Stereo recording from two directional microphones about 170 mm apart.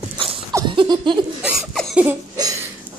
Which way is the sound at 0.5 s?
25° right (ahead or behind).